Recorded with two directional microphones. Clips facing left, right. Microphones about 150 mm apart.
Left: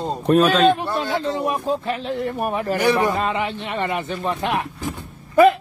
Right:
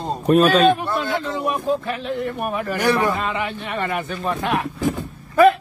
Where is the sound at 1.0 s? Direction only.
30° left (ahead or behind).